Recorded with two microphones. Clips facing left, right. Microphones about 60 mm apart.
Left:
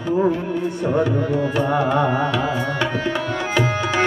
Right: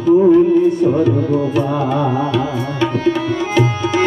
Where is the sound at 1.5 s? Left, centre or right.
Left.